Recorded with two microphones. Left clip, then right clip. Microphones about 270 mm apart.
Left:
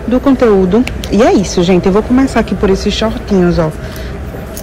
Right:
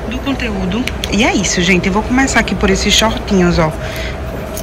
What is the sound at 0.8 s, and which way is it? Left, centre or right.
Speech, centre.